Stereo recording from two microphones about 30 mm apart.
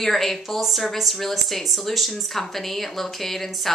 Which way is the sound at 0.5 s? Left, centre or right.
Centre.